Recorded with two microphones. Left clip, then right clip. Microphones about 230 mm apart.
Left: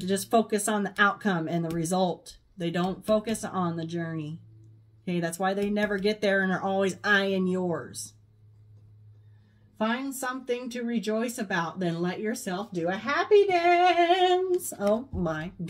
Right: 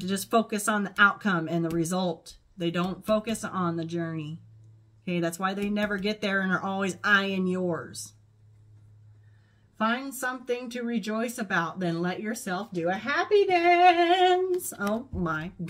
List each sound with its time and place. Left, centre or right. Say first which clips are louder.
0.0 s speech: left 1 dB; centre
9.8 s speech: right 1 dB; right